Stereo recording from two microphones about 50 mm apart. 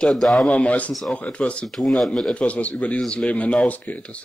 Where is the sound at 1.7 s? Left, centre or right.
Centre.